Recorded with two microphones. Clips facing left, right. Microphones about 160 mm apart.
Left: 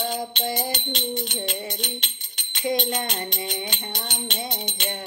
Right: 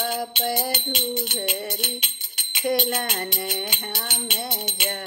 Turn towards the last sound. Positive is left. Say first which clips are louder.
# right 1 dB
turn(degrees=-5)  # may be behind; listen again after turning